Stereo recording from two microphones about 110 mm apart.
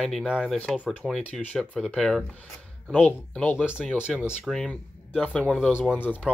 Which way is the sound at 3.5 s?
10° right (ahead or behind).